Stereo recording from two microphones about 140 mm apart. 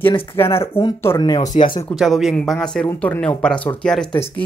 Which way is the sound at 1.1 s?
35° left (ahead or behind).